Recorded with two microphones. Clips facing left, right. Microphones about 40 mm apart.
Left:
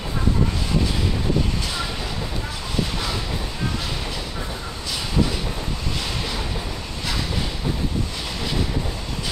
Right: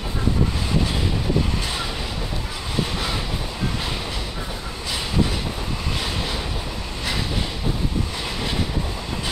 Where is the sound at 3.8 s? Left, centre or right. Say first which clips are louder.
Right 1 dB; centre.